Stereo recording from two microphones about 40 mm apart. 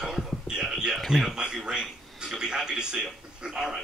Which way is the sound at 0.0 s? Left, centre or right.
Centre.